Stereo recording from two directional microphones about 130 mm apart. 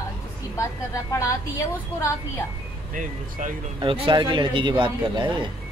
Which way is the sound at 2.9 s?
85° right.